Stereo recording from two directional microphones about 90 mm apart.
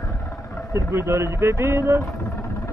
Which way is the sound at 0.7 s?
30° right (ahead or behind).